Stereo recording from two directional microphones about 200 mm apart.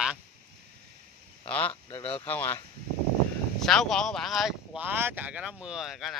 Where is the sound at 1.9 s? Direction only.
30° left (ahead or behind).